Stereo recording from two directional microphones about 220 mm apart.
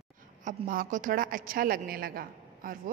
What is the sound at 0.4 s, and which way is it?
A woman's voice, 35° right (ahead or behind).